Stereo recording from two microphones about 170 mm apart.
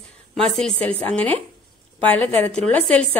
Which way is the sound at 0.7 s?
35° right (ahead or behind).